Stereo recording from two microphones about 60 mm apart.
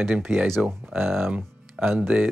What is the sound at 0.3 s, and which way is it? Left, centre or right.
Speech, right.